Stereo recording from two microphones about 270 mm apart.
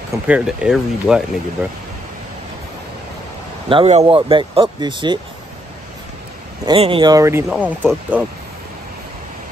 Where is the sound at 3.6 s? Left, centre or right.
Right.